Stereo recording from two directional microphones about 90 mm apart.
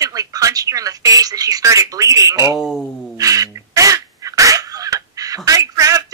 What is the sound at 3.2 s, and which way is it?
Crow, 40° right (ahead or behind).